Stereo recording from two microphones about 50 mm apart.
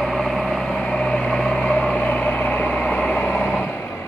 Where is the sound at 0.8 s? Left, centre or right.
Left.